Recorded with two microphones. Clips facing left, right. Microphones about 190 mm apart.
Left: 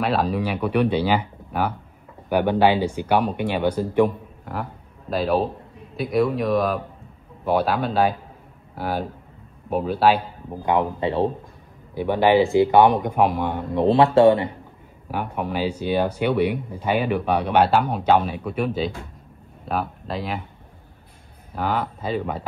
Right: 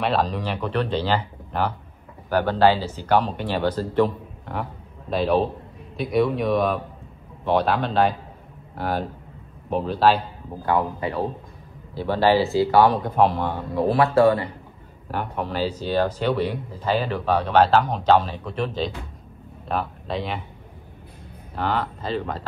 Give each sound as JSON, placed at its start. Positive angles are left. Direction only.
{"t": 0.0, "sound": "speech", "side_deg": 5}
{"t": 5.1, "sound": "speech", "side_deg": 0}
{"t": 11.9, "sound": "a man's voice", "side_deg": 15}
{"t": 21.5, "sound": "speech", "side_deg": 10}